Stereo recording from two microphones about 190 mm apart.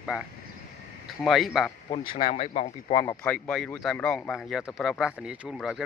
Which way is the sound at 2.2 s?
35° left (ahead or behind).